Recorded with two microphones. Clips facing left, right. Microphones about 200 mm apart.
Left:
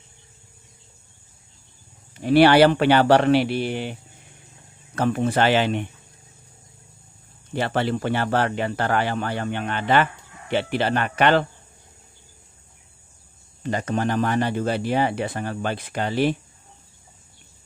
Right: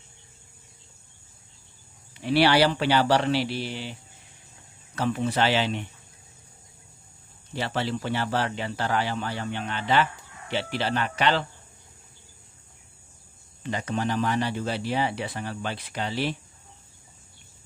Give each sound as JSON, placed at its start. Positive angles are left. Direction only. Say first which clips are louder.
{"t": 2.1, "sound": "speech", "louder": "left 6 dB", "side_deg": 50}
{"t": 7.5, "sound": "speech", "louder": "left 5 dB", "side_deg": 55}
{"t": 13.6, "sound": "speech", "louder": "left 4 dB", "side_deg": 45}